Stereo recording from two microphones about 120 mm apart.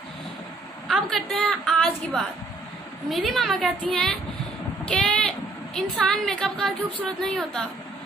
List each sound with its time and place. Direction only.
0.8 s a woman's voice: centre (ahead or behind)
3.1 s a woman's voice: centre (ahead or behind)